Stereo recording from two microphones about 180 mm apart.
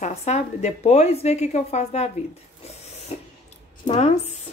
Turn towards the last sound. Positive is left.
turn(degrees=40)  # may be behind; listen again after turning